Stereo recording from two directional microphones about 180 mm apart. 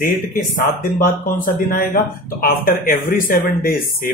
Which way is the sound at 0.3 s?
50° left (ahead or behind).